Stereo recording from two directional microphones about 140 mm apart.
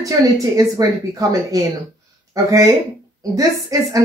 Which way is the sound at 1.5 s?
25° right (ahead or behind).